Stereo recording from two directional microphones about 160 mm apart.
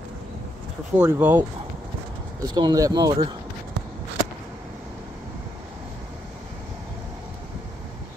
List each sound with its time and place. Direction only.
0.9 s speech: 10° right (ahead or behind)
2.4 s speech: 25° right (ahead or behind)